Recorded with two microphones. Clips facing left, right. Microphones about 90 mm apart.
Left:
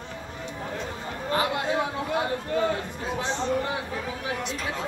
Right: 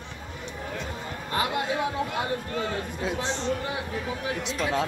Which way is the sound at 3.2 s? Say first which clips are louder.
Left 2 dB; 25° right (ahead or behind).